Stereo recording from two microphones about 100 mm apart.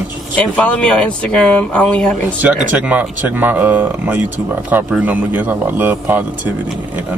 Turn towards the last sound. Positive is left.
turn(degrees=-20)  # may be behind; listen again after turning